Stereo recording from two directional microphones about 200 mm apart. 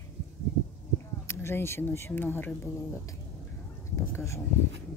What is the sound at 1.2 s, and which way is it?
Speech, 10° left (ahead or behind).